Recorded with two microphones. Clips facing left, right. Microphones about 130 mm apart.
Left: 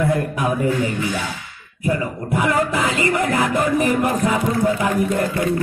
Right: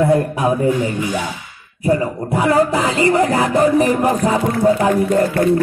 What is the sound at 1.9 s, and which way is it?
Speech, 35° right (ahead or behind).